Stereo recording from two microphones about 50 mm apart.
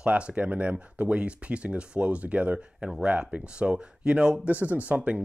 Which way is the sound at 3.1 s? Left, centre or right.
Right.